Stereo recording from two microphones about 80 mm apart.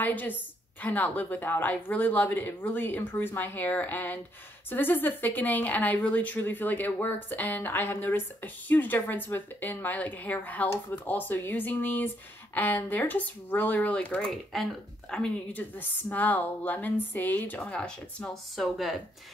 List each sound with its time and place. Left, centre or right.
0.0 s speech: left
14.3 s a woman's voice: centre